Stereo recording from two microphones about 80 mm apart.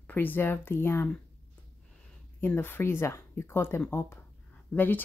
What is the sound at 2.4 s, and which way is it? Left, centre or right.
Speech, left.